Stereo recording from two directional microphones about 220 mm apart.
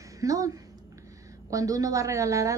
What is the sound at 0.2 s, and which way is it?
A woman's voice, 15° right (ahead or behind).